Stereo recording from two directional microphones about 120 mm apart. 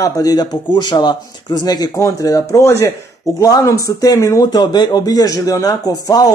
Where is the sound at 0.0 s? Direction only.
30° left (ahead or behind).